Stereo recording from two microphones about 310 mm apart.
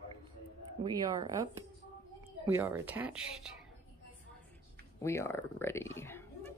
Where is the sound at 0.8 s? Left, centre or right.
Centre.